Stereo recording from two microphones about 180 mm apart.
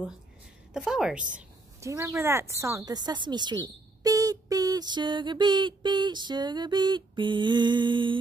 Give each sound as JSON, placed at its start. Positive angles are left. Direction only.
{"t": 0.7, "sound": "a woman's voice", "side_deg": -5}
{"t": 1.8, "sound": "a woman's voice", "side_deg": -15}